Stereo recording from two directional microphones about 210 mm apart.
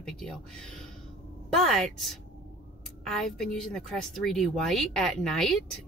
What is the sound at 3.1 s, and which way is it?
A woman's voice, centre (ahead or behind).